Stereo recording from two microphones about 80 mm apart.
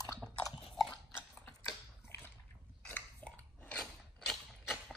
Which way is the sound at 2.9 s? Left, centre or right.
Left.